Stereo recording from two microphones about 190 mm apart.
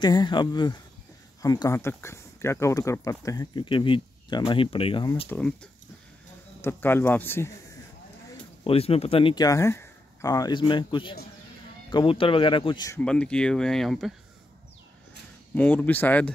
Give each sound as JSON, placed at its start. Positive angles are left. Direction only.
{"t": 0.0, "sound": "speech", "side_deg": 25}
{"t": 5.3, "sound": "speech", "side_deg": 5}
{"t": 8.6, "sound": "speech", "side_deg": 30}
{"t": 13.0, "sound": "speech", "side_deg": 5}
{"t": 15.5, "sound": "speech", "side_deg": 10}